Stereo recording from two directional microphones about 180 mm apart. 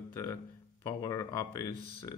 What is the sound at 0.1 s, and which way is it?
Speech, 15° left (ahead or behind).